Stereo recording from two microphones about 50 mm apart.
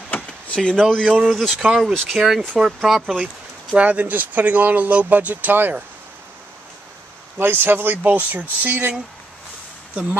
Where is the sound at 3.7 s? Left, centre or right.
Right.